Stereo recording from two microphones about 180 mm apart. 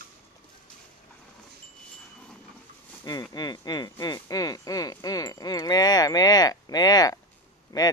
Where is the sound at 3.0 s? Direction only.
20° left (ahead or behind).